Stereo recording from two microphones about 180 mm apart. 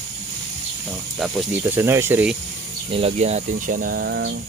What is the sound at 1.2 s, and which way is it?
Speech, 5° right (ahead or behind).